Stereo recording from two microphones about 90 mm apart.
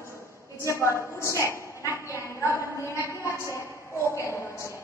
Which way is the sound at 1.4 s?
30° left (ahead or behind).